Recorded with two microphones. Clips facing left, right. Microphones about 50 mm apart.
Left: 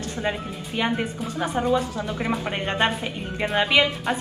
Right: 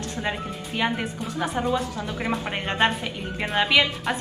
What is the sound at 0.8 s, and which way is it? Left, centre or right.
A woman's voice, centre.